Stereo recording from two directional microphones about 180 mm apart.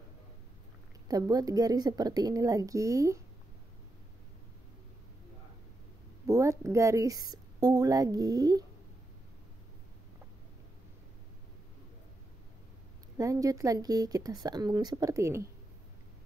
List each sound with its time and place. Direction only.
1.0 s speech: 20° right (ahead or behind)
6.2 s a woman's voice: 15° right (ahead or behind)
13.2 s speech: 20° right (ahead or behind)